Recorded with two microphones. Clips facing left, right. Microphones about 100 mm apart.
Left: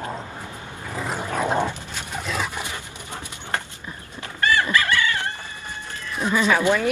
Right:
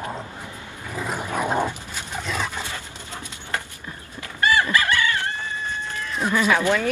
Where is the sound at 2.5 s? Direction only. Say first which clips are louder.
Even; 15° left (ahead or behind).